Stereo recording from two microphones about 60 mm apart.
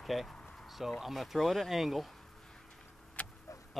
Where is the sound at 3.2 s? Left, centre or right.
Left.